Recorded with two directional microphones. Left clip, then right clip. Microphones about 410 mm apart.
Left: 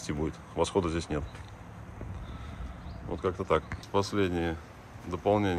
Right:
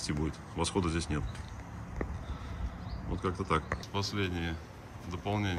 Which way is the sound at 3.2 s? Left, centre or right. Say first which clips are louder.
Left 4 dB; centre.